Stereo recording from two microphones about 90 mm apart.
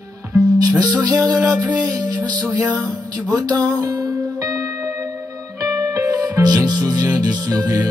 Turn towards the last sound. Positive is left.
turn(degrees=-45)  # may be behind; listen again after turning